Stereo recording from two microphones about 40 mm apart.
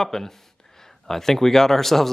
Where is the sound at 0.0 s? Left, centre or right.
Centre.